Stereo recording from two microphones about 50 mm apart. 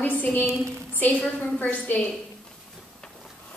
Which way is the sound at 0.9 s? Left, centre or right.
Left.